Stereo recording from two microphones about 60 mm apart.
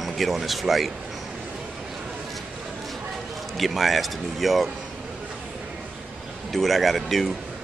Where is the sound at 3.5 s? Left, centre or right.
Centre.